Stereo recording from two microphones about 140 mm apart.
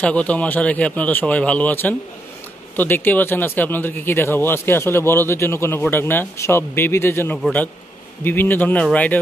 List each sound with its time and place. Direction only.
0.0 s speech: 10° left (ahead or behind)